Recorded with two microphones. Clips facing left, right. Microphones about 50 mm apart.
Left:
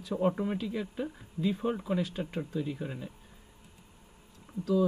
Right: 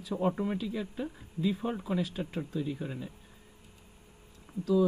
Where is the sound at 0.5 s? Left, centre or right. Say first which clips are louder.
Left 1 dB; centre.